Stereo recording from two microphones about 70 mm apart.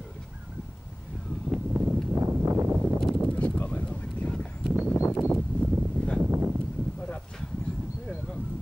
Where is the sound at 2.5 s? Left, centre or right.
Right.